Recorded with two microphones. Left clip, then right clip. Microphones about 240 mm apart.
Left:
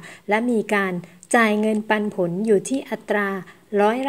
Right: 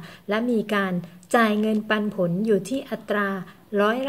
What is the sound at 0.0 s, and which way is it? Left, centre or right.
A woman's voice, left.